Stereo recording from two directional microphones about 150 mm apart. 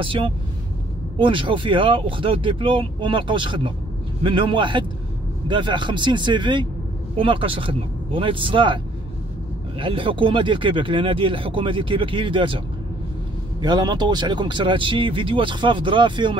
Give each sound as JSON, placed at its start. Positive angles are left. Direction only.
{"t": 0.0, "sound": "speech", "side_deg": -35}
{"t": 9.8, "sound": "speech", "side_deg": -35}